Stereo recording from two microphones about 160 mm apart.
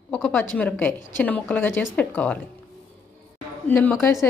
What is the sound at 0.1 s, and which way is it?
A woman's voice, 10° left (ahead or behind).